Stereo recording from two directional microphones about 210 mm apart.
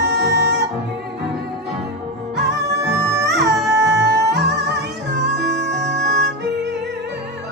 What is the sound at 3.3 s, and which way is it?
Music, 55° right (ahead or behind).